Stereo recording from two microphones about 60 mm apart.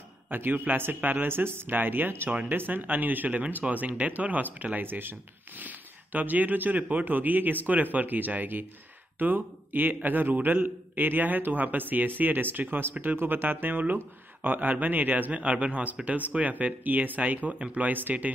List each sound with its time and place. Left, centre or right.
0.3 s a man's voice: right